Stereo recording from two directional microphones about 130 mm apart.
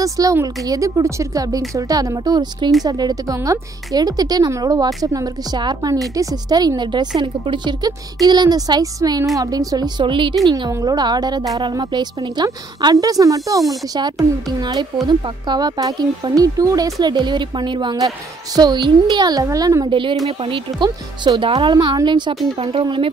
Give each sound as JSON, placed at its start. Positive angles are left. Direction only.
{"t": 0.0, "sound": "speech", "side_deg": -25}
{"t": 10.7, "sound": "speech", "side_deg": -30}